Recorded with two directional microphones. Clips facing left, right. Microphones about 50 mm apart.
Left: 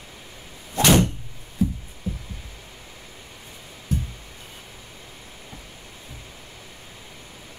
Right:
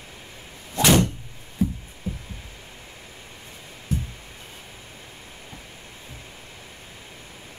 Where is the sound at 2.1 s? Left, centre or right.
Right.